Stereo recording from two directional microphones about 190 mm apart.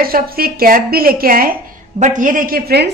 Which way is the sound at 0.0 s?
50° right (ahead or behind).